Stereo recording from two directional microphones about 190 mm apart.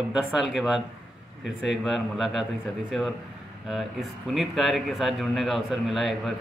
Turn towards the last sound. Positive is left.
turn(degrees=0)  # may be behind; listen again after turning